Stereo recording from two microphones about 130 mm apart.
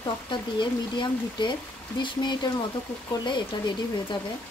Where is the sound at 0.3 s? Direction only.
35° left (ahead or behind).